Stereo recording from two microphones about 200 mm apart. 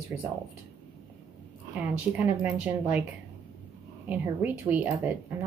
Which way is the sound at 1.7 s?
5° right (ahead or behind).